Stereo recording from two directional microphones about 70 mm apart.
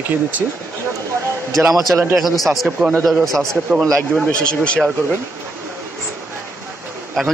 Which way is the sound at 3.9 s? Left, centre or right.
Centre.